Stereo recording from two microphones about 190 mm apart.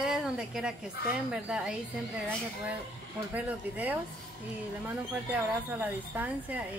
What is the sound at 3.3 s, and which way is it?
Speech, 10° right (ahead or behind).